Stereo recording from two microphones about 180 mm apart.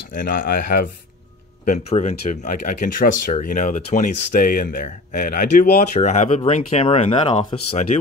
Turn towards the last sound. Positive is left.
turn(degrees=40)  # may be behind; listen again after turning